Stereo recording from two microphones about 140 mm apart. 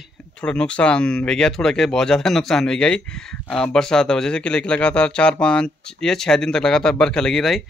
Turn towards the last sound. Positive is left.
turn(degrees=0)  # may be behind; listen again after turning